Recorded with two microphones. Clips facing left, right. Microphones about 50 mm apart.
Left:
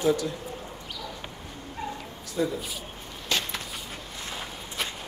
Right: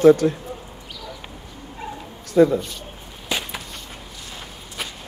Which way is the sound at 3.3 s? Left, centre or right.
Centre.